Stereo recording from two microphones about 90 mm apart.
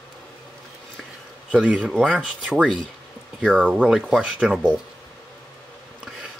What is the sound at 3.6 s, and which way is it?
Speech, 10° right (ahead or behind).